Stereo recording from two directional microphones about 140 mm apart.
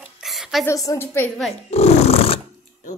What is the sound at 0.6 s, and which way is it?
Speech, 25° left (ahead or behind).